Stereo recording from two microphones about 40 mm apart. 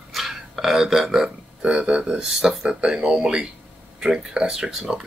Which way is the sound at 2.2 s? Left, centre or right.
Centre.